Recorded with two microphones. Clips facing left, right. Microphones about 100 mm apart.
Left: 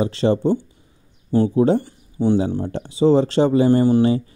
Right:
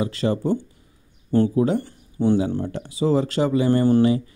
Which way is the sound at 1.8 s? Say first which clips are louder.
Left 1 dB; 15° left (ahead or behind).